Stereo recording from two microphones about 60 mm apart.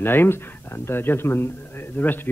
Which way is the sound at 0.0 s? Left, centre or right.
Left.